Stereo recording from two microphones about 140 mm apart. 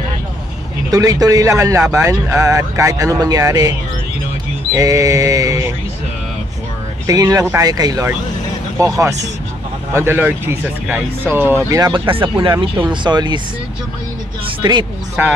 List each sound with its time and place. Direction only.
0.9 s speech: 25° right (ahead or behind)
4.7 s a sound: 25° right (ahead or behind)
7.1 s speech: 25° right (ahead or behind)
11.9 s speech: 40° right (ahead or behind)
14.6 s speech: 35° right (ahead or behind)
15.2 s speech: 15° right (ahead or behind)